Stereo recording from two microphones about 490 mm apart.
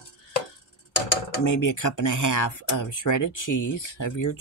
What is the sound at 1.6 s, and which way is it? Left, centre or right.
Speech, left.